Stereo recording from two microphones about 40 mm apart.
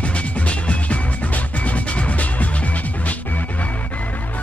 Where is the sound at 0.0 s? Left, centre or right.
Left.